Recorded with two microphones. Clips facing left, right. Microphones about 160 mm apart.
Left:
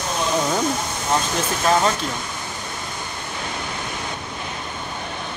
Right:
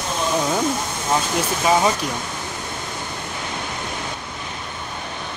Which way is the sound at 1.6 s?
10° right (ahead or behind).